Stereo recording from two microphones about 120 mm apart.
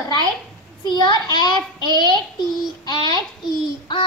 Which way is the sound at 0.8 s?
40° left (ahead or behind).